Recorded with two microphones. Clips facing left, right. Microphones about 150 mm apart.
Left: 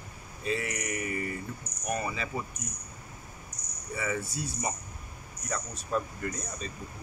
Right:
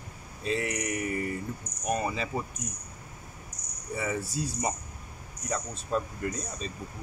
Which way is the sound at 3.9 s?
35° right (ahead or behind).